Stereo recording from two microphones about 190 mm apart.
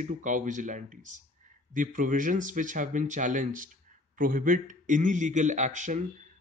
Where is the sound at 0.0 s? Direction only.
40° right (ahead or behind).